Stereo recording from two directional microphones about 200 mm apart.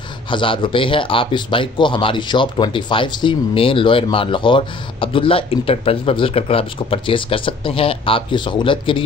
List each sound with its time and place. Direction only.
0.3 s speech: 25° left (ahead or behind)